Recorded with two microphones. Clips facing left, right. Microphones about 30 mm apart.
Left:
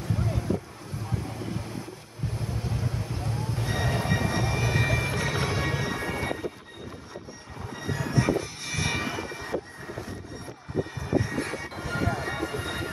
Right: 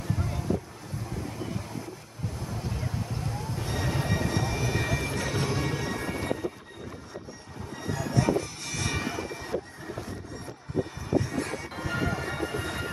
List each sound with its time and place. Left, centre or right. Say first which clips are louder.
0.1 s boat: left 3 dB; centre
2.7 s a sound: left 1 dB; centre
3.5 s train: left 2 dB; centre
7.8 s train: left 1 dB; left
11.1 s vehicle: left 1 dB; centre
11.7 s music: even; centre